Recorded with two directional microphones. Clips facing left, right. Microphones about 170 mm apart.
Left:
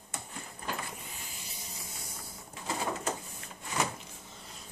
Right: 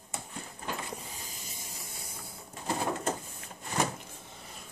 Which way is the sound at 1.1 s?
40° right (ahead or behind).